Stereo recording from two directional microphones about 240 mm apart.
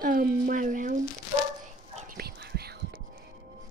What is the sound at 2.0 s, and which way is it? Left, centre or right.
Whispering, right.